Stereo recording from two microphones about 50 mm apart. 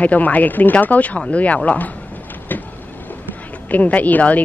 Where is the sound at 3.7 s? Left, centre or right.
Left.